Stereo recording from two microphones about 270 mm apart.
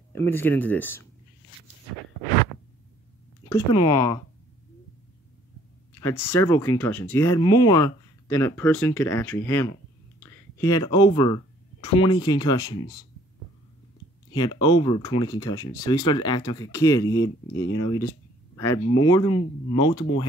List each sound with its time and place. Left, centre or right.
0.1 s speech: centre
3.4 s speech: centre
6.2 s speech: centre
14.3 s speech: centre